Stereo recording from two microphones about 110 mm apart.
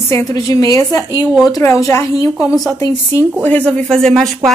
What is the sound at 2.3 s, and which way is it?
Speech, centre (ahead or behind).